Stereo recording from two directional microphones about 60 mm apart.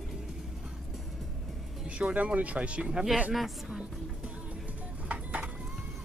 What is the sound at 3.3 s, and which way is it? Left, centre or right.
Speech, centre.